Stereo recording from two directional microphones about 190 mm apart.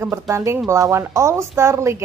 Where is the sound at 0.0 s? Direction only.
15° right (ahead or behind).